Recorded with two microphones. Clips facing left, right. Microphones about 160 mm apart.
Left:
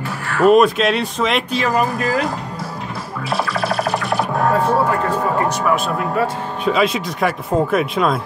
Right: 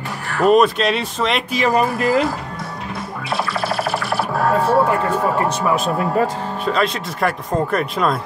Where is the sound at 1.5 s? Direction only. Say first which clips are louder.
Right 1 dB; 15° right (ahead or behind).